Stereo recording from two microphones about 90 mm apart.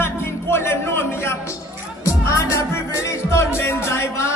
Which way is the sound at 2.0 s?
35° left (ahead or behind).